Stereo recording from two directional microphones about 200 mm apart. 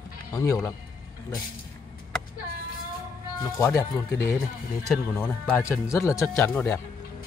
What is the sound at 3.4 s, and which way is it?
Speech, 15° left (ahead or behind).